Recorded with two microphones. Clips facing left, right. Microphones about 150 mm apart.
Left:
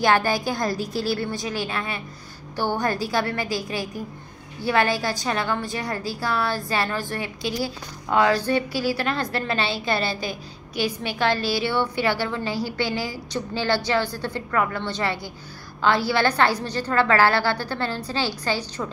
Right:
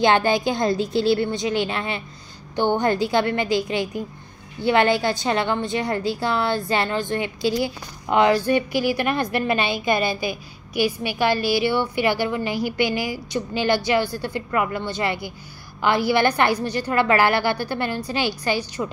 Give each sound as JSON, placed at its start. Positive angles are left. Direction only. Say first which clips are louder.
{"t": 0.0, "sound": "a woman's voice", "louder": "right 3 dB", "side_deg": -25}